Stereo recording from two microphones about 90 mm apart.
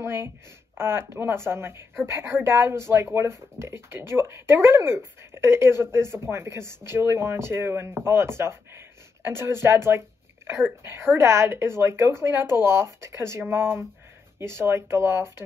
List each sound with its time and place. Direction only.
0.0 s speech: 25° right (ahead or behind)